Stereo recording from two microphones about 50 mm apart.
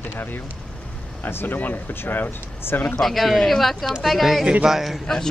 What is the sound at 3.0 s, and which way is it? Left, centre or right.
Speech, centre.